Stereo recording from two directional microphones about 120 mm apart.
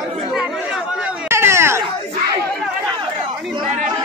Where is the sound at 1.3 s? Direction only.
20° right (ahead or behind).